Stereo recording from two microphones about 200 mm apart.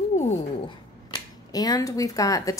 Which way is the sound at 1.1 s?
20° left (ahead or behind).